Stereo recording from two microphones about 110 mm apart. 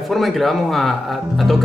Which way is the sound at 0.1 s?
Centre (ahead or behind).